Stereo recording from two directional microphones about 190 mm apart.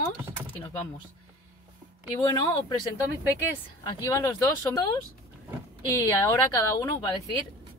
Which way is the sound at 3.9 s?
15° left (ahead or behind).